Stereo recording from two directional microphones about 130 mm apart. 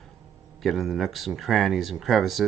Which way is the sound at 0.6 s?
Centre (ahead or behind).